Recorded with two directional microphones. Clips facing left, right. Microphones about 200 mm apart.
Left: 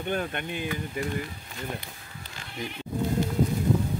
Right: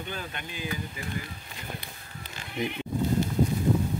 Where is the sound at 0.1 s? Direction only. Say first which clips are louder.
Left 8 dB; 55° left (ahead or behind).